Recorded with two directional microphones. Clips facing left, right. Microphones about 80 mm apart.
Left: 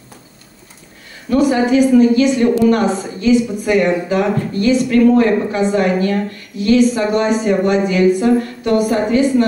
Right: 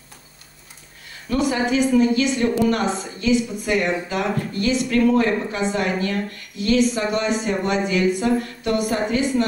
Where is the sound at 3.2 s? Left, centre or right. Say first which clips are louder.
Left 6 dB; left.